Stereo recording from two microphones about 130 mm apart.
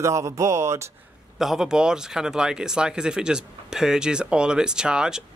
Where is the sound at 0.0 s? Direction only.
25° right (ahead or behind).